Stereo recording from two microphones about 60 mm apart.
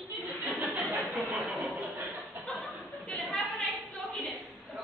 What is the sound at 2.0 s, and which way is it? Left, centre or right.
Chuckle, right.